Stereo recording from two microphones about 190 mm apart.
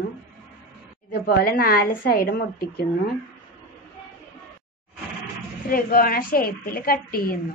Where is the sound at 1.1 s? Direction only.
55° left (ahead or behind).